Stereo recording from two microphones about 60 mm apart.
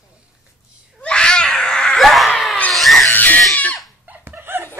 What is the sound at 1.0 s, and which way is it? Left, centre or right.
Baby cry, centre.